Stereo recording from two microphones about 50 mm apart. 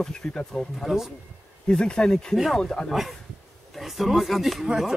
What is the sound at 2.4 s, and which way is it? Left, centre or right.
Speech, centre.